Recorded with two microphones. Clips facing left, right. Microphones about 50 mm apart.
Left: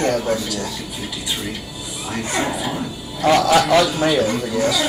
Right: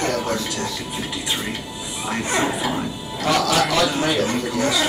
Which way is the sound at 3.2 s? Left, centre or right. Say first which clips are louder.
Left 5 dB; left.